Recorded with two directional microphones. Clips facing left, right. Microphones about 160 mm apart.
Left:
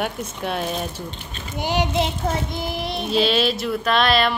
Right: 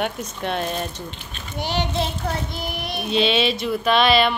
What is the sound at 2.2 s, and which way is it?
Child singing, 25° left (ahead or behind).